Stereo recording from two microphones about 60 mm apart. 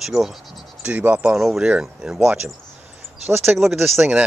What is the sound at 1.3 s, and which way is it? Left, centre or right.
Speech, centre.